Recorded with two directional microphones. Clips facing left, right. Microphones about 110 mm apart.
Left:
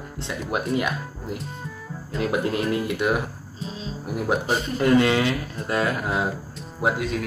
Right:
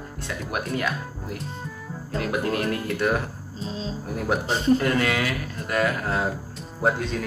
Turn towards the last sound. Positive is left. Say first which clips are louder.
# even
turn(degrees=5)  # may be behind; listen again after turning